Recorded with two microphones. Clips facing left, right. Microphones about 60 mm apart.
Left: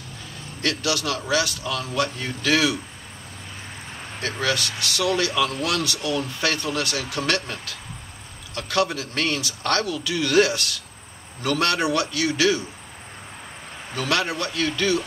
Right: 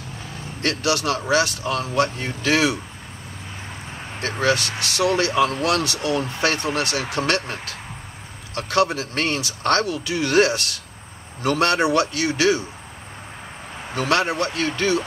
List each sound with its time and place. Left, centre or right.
0.6 s speech: right
4.2 s speech: right
13.9 s speech: right